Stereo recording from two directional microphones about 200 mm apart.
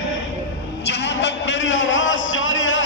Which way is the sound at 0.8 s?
60° left (ahead or behind).